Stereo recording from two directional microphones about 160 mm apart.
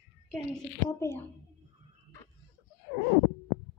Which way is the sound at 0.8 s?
15° left (ahead or behind).